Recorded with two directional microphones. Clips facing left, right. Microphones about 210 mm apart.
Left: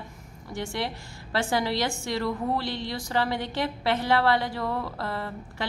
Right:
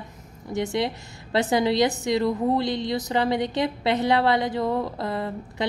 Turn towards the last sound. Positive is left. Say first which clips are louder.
# right 5 dB
turn(degrees=-20)  # may be behind; listen again after turning